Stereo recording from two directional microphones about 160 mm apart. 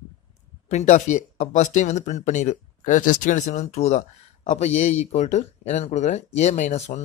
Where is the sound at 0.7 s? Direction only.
45° left (ahead or behind).